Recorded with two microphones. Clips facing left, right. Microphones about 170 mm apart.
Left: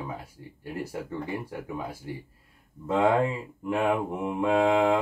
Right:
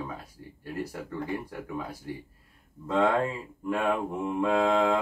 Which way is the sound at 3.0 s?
15° left (ahead or behind).